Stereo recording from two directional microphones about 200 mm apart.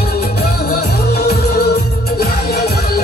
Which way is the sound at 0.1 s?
50° left (ahead or behind).